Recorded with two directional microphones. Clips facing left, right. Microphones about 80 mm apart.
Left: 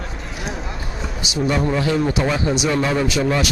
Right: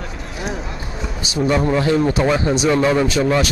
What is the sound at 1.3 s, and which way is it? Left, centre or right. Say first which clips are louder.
Speech: right 3 dB; right.